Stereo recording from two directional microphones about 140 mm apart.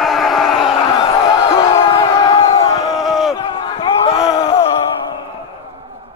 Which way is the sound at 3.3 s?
35° left (ahead or behind).